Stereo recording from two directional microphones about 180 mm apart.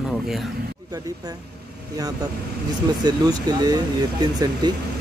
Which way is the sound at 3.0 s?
20° right (ahead or behind).